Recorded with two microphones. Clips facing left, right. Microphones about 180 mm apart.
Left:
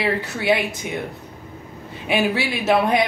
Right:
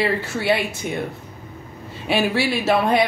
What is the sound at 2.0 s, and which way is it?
Speech, 20° left (ahead or behind).